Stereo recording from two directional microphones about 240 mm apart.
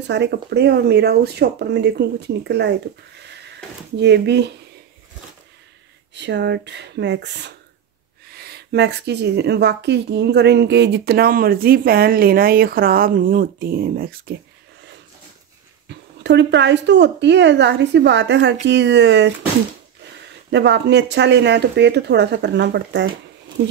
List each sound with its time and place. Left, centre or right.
0.0 s speech: right
4.0 s speech: right
6.1 s speech: right
15.9 s speech: right
20.5 s speech: right